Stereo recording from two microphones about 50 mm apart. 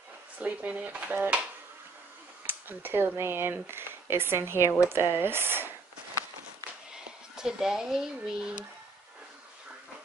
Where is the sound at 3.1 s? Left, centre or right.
Right.